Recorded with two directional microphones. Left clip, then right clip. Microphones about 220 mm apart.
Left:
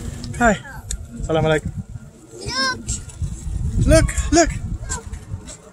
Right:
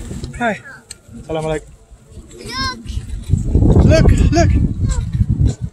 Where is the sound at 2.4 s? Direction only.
35° left (ahead or behind).